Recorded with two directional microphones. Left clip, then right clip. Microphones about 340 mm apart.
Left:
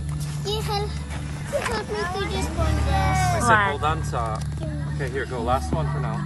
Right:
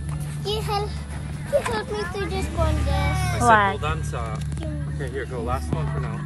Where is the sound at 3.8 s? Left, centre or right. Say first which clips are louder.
Left 4 dB; left.